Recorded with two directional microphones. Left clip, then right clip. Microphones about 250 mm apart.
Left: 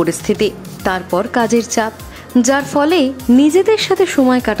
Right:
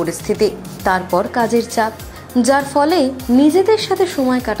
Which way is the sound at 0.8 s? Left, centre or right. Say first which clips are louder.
Right 1 dB; centre.